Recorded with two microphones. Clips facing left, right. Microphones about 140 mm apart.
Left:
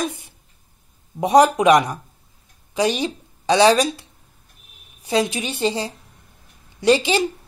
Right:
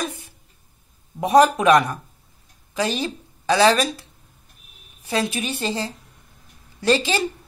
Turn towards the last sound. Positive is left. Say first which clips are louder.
# left 3 dB
turn(degrees=15)  # may be behind; listen again after turning